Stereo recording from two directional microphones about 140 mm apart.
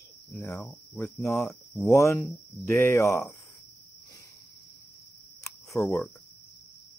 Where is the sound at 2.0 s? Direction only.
20° left (ahead or behind).